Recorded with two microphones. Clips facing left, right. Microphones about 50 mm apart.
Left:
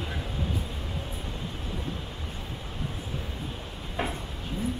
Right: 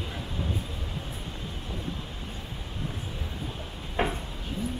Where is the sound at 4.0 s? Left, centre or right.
Right.